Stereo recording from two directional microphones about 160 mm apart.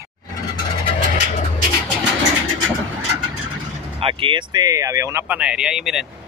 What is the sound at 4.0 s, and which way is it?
Speech, 35° right (ahead or behind).